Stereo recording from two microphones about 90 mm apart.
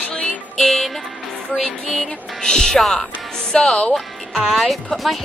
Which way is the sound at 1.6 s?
5° left (ahead or behind).